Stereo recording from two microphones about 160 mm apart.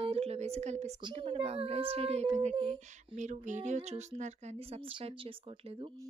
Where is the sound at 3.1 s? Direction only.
50° right (ahead or behind).